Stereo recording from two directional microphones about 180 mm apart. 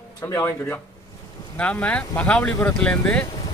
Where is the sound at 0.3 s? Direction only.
15° left (ahead or behind).